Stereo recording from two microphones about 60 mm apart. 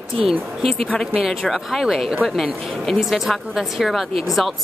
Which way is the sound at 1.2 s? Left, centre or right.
Centre.